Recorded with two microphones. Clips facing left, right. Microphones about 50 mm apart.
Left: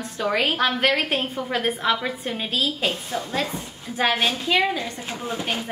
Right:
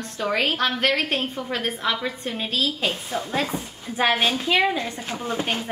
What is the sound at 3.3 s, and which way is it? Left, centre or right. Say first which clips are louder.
A woman's voice: right 1 dB; centre.